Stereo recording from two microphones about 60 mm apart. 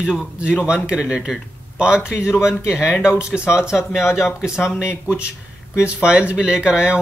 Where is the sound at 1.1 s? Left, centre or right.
Centre.